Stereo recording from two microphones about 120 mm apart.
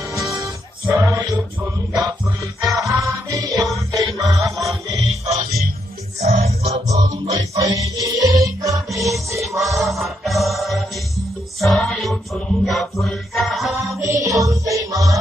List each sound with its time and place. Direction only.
0.9 s music: 25° right (ahead or behind)
2.6 s music: 30° right (ahead or behind)
6.2 s music: 65° right (ahead or behind)
6.9 s music: 30° right (ahead or behind)
9.6 s music: centre (ahead or behind)
14.2 s music: 25° right (ahead or behind)